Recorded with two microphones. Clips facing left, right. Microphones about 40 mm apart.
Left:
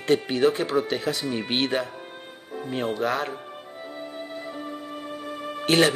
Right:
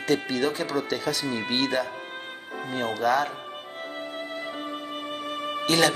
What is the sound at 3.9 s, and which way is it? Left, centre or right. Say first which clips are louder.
Music: right 1 dB; right.